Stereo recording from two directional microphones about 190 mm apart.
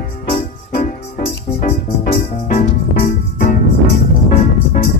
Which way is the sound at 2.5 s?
40° left (ahead or behind).